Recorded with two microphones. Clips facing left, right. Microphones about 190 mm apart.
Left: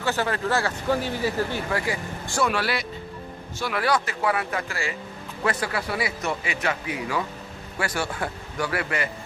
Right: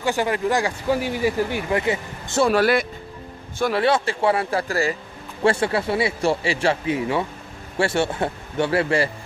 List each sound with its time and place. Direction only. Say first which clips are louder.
0.0 s speech: right 4 dB; 15° right (ahead or behind)
2.5 s speech: right 9 dB; 50° right (ahead or behind)
3.7 s speech: right 3 dB; 25° right (ahead or behind)
5.4 s speech: right 7 dB; 30° right (ahead or behind)